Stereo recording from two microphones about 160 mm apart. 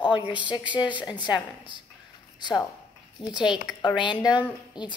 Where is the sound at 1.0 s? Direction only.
30° left (ahead or behind).